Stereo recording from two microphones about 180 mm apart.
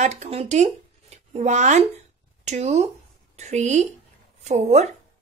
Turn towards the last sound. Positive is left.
turn(degrees=-40)  # may be behind; listen again after turning